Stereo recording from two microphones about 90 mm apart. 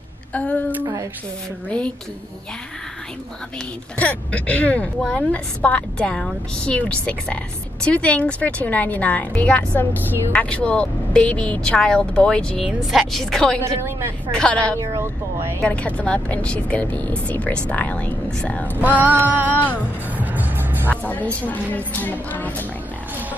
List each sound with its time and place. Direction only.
0.3 s a woman's voice: 15° left (ahead or behind)
1.7 s a woman's voice: 15° left (ahead or behind)
4.0 s a woman's voice: 15° left (ahead or behind)
18.8 s a sound: 20° right (ahead or behind)
20.2 s music: 20° right (ahead or behind)
20.9 s music: 15° left (ahead or behind)
21.4 s speech: 20° left (ahead or behind)